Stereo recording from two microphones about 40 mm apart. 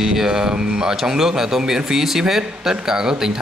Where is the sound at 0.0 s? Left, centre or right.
Centre.